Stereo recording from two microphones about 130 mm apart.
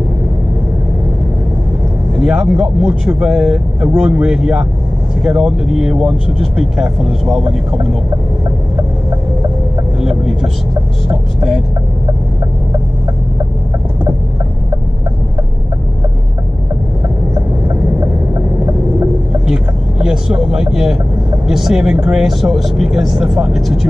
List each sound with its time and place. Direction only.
2.1 s speech: 5° right (ahead or behind)
9.9 s vehicle: 5° right (ahead or behind)
11.1 s speech: 5° right (ahead or behind)
17.3 s vehicle: 25° right (ahead or behind)
19.4 s vehicle: 5° right (ahead or behind)
21.5 s speech: 5° right (ahead or behind)